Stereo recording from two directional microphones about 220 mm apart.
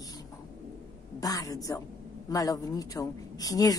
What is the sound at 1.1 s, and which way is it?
A woman's voice, 15° left (ahead or behind).